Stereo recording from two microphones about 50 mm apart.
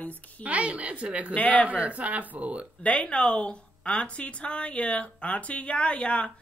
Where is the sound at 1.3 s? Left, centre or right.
Left.